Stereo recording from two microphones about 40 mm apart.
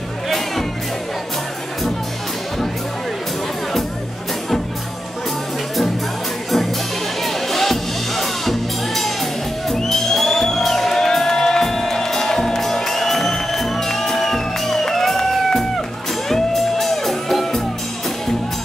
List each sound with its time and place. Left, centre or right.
7.2 s music: centre